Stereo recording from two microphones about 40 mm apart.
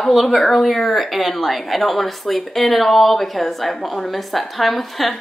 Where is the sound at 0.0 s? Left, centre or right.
Centre.